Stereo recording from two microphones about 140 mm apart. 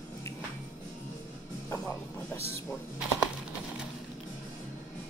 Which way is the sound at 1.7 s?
20° left (ahead or behind).